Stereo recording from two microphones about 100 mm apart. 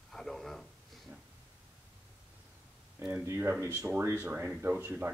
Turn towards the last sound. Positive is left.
turn(degrees=-20)  # may be behind; listen again after turning